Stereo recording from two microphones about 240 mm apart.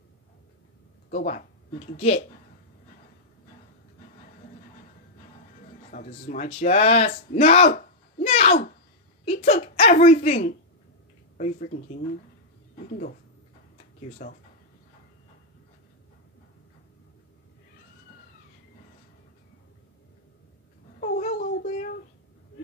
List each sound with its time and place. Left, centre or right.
1.1 s speech: left
5.9 s a woman's voice: left
14.2 s speech: left
21.0 s cat: left